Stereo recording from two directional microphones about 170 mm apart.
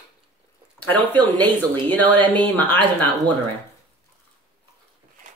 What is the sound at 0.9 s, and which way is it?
Speech, 10° left (ahead or behind).